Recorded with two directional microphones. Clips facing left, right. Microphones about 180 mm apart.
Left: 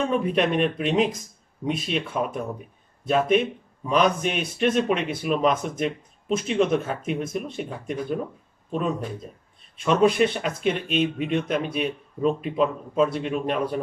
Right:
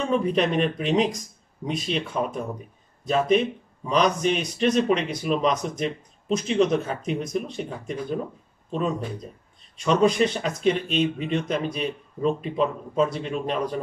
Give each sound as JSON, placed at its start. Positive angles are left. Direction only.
{"t": 0.1, "sound": "speech", "side_deg": 5}
{"t": 9.8, "sound": "speech", "side_deg": 5}